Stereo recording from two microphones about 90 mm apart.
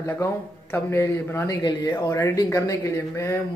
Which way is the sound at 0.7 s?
30° left (ahead or behind).